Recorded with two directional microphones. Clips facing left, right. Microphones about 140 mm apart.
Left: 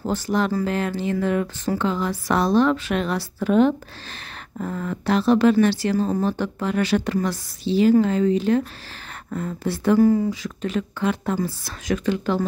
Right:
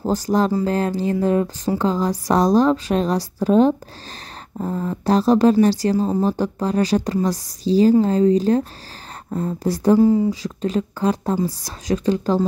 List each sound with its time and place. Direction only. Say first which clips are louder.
0.0 s speech: right 4 dB; 35° right (ahead or behind)
5.0 s speech: right 2 dB; 40° right (ahead or behind)
9.9 s speech: right 1 dB; 20° right (ahead or behind)
10.4 s speech: right 4 dB; 35° right (ahead or behind)